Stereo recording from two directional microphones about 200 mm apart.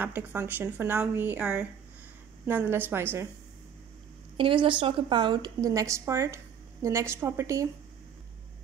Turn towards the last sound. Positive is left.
turn(degrees=-15)  # may be behind; listen again after turning